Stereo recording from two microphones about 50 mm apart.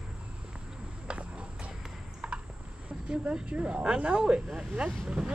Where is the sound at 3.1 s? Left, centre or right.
Right.